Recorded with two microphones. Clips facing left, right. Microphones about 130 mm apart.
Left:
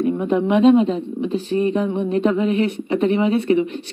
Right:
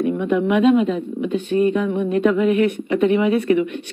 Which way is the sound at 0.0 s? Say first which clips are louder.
Even; 30° left (ahead or behind).